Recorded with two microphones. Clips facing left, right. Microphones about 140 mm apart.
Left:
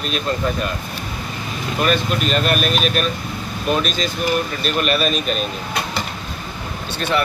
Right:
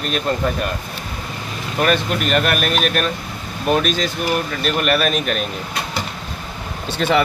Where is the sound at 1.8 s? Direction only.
60° right (ahead or behind).